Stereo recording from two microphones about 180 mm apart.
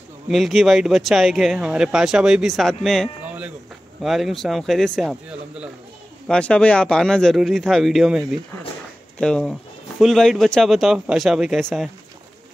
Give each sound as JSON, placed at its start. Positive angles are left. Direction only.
{"t": 0.3, "sound": "speech", "side_deg": 0}
{"t": 6.2, "sound": "speech", "side_deg": 5}
{"t": 9.2, "sound": "speech", "side_deg": 5}